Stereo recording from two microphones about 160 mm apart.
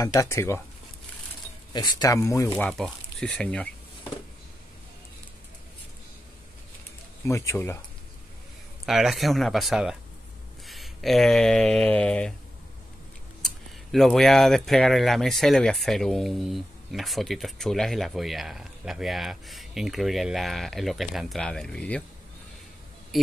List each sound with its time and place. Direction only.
0.0 s speech: 20° left (ahead or behind)
1.7 s speech: 25° left (ahead or behind)
2.5 s speech: 5° left (ahead or behind)
7.2 s speech: 15° left (ahead or behind)
8.8 s speech: centre (ahead or behind)
13.9 s speech: centre (ahead or behind)
23.1 s speech: centre (ahead or behind)